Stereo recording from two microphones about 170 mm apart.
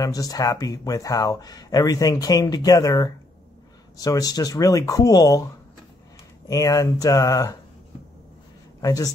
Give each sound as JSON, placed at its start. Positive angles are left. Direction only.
{"t": 0.0, "sound": "speech", "side_deg": 20}
{"t": 6.5, "sound": "speech", "side_deg": 20}
{"t": 8.8, "sound": "speech", "side_deg": 20}